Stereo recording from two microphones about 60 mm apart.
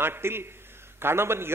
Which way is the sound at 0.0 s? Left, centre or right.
Right.